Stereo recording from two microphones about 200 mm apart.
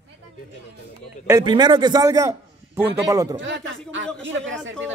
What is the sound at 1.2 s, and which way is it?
A man's voice, 20° right (ahead or behind).